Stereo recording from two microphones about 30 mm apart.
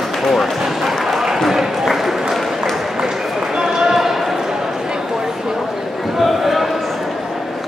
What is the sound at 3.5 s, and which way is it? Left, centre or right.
Basketball bounce, centre.